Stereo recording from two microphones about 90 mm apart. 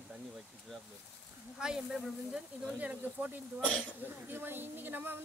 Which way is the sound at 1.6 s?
5° right (ahead or behind).